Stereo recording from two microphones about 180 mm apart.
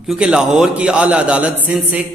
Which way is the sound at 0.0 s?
5° right (ahead or behind).